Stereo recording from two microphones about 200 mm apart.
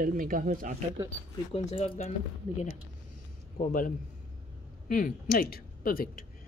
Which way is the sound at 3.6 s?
40° left (ahead or behind).